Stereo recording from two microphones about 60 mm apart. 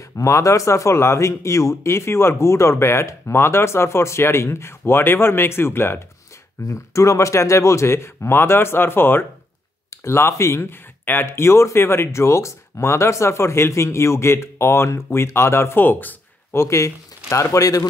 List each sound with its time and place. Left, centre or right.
0.0 s speech: left
6.7 s speech: left
9.8 s speech: left
16.5 s a man's voice: left